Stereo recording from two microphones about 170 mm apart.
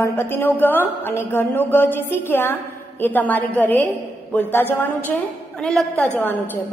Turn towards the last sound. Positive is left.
turn(degrees=10)  # may be behind; listen again after turning